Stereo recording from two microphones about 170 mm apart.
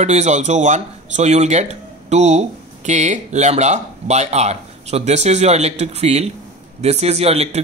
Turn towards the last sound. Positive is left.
turn(degrees=-40)  # may be behind; listen again after turning